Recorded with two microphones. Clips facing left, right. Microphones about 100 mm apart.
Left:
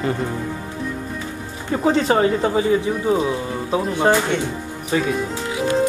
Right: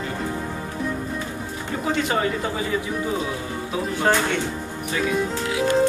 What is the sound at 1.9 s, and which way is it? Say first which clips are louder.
Speech: left 6 dB; 35° left (ahead or behind).